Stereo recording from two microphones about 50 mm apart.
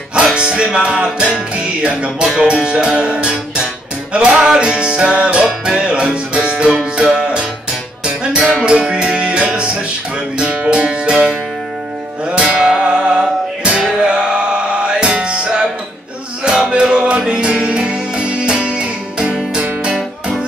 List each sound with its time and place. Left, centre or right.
0.1 s music: centre
12.5 s music: centre